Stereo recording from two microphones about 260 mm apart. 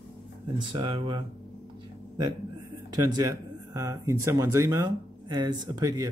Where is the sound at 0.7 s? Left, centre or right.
Centre.